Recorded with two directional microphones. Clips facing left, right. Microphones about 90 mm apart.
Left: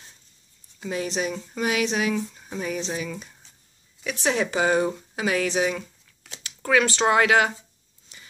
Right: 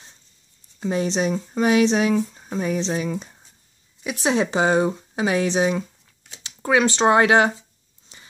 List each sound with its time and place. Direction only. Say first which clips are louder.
0.7 s speech: right 5 dB; 30° right (ahead or behind)
4.0 s speech: right 3 dB; 15° right (ahead or behind)
8.1 s a sound: right 1 dB; 25° right (ahead or behind)